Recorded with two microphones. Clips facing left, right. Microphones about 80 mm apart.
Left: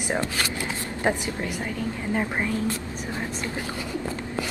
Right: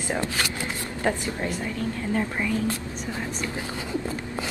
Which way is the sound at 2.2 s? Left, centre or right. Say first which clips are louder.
Left 1 dB; left.